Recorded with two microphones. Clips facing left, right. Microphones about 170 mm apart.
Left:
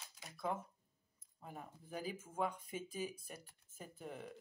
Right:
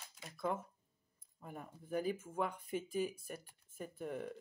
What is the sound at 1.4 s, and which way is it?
Speech, 50° right (ahead or behind).